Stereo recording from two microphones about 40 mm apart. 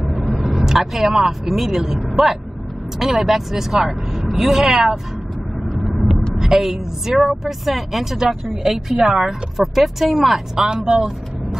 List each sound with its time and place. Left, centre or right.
0.1 s speech: centre
2.0 s vehicle: centre
3.0 s speech: centre
3.8 s vehicle: centre
4.3 s speech: centre
5.9 s vehicle: centre
6.3 s speech: centre